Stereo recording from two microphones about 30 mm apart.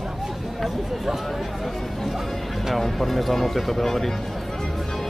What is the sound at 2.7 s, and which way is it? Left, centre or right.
Speech, centre.